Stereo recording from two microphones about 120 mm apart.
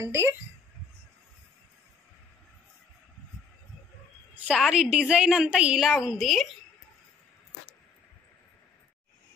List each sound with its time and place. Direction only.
0.0 s a woman's voice: 20° right (ahead or behind)
4.6 s a woman's voice: 5° right (ahead or behind)